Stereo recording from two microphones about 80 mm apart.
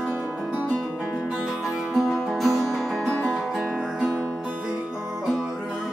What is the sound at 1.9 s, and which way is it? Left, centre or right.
Music, centre.